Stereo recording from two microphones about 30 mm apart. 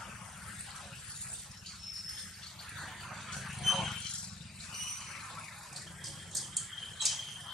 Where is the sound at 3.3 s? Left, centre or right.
Centre.